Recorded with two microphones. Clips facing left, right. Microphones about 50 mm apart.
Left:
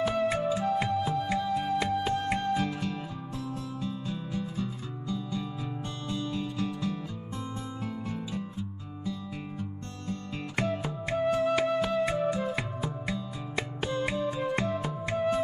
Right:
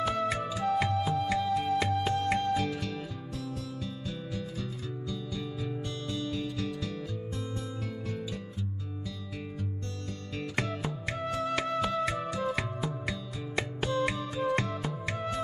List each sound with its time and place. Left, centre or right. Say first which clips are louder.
0.0 s music: left 3 dB; centre
0.5 s music: left 1 dB; centre
1.0 s music: even; centre